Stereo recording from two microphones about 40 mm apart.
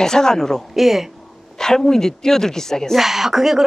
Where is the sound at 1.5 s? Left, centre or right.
Centre.